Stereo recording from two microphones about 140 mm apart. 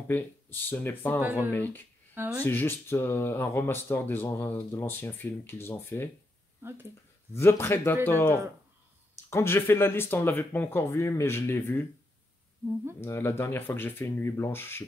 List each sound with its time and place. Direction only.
0.1 s speech: 15° left (ahead or behind)
1.2 s speech: 15° right (ahead or behind)
1.5 s speech: 15° left (ahead or behind)
2.1 s speech: 15° right (ahead or behind)
2.4 s speech: 15° left (ahead or behind)
6.6 s speech: 15° right (ahead or behind)
7.3 s speech: 20° left (ahead or behind)
13.0 s speech: 20° left (ahead or behind)